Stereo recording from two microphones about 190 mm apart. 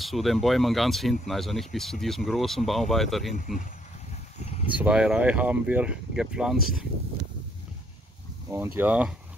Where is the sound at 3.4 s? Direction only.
45° left (ahead or behind).